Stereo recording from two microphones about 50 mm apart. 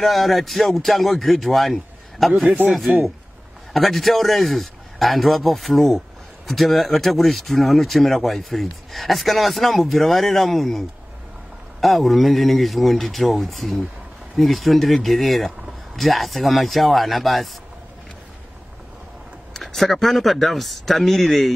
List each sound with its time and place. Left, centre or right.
0.0 s speech: centre
2.4 s speech: right
3.7 s speech: centre
19.5 s speech: centre